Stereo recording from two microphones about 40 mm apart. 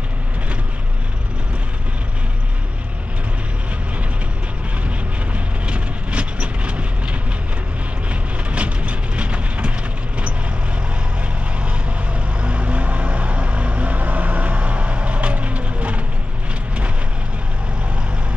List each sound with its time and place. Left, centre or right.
5.3 s vehicle: right
11.6 s vehicle: right